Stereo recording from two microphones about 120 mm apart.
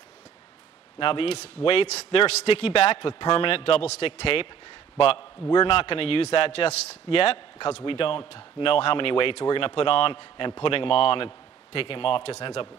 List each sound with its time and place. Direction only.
0.9 s a man's voice: 50° left (ahead or behind)